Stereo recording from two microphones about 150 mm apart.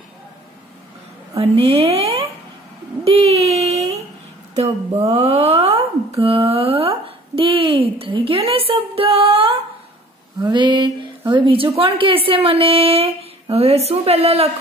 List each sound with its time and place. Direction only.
1.7 s speech: 40° right (ahead or behind)
3.0 s a sound: 40° right (ahead or behind)
4.6 s a woman's voice: 45° right (ahead or behind)